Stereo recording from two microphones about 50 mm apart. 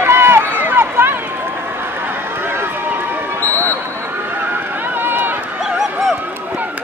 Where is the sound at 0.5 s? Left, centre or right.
Right.